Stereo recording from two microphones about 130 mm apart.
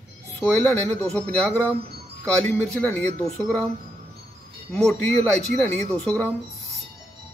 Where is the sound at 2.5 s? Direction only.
15° left (ahead or behind).